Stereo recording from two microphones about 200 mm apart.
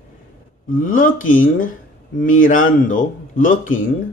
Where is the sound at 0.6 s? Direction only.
40° left (ahead or behind).